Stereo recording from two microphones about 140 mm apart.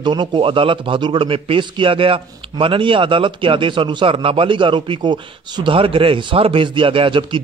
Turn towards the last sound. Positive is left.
turn(degrees=-35)  # may be behind; listen again after turning